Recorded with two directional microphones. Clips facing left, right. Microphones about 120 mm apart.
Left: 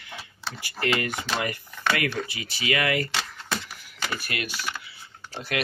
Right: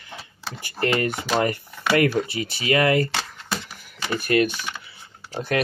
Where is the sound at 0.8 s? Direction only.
35° right (ahead or behind).